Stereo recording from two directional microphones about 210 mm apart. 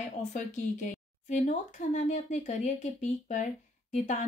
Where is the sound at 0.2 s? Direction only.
35° left (ahead or behind).